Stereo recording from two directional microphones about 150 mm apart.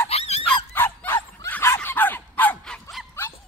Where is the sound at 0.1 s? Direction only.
45° left (ahead or behind).